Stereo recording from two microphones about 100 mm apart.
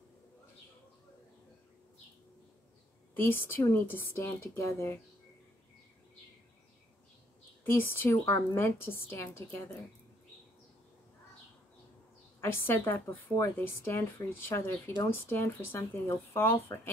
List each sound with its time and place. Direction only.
3.2 s a woman's voice: 20° left (ahead or behind)
7.6 s a woman's voice: 20° left (ahead or behind)
12.4 s a woman's voice: 25° left (ahead or behind)